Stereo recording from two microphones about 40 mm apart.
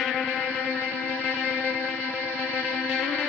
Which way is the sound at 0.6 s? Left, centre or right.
Left.